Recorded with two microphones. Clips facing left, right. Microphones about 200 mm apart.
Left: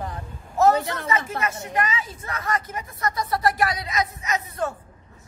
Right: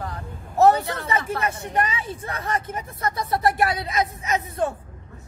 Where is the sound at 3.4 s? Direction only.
55° right (ahead or behind).